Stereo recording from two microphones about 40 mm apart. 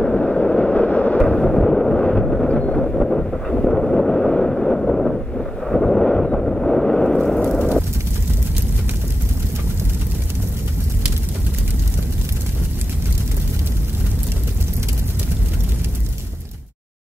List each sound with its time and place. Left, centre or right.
0.0 s a sound: left
1.2 s a sound: centre
2.4 s vehicle: left
2.9 s vehicle: centre
3.4 s wind noise: centre
3.7 s wind noise: centre
6.4 s vehicle: centre
7.5 s fire: centre